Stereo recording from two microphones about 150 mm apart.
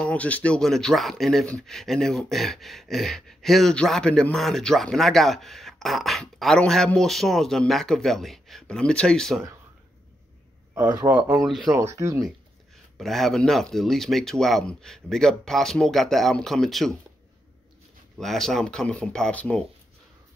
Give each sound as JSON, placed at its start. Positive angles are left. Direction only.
{"t": 0.0, "sound": "speech", "side_deg": 10}
{"t": 11.1, "sound": "speech", "side_deg": -10}
{"t": 11.3, "sound": "speech", "side_deg": 0}
{"t": 11.7, "sound": "speech", "side_deg": -20}
{"t": 12.9, "sound": "speech", "side_deg": 0}
{"t": 18.1, "sound": "speech", "side_deg": 0}